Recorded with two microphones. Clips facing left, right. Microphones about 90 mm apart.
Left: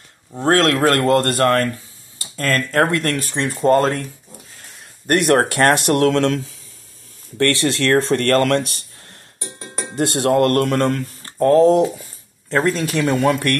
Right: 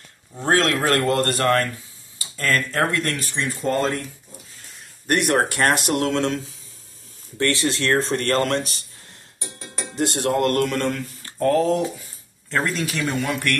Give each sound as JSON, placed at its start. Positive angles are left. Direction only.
{"t": 0.4, "sound": "speech", "side_deg": 55}
{"t": 2.7, "sound": "speech", "side_deg": 55}
{"t": 5.3, "sound": "speech", "side_deg": 60}
{"t": 7.3, "sound": "speech", "side_deg": 70}
{"t": 10.3, "sound": "speech", "side_deg": 45}
{"t": 11.2, "sound": "speech", "side_deg": 35}